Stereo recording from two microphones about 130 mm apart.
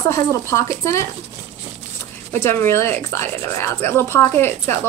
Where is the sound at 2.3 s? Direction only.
15° left (ahead or behind).